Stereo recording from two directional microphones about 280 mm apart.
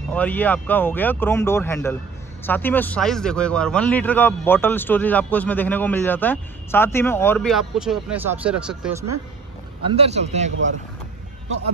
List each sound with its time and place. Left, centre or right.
0.1 s a man's voice: centre
9.8 s a man's voice: right